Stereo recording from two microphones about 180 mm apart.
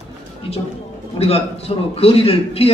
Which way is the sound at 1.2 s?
35° left (ahead or behind).